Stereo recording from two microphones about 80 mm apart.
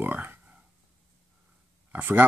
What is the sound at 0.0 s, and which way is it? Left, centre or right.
Speech, right.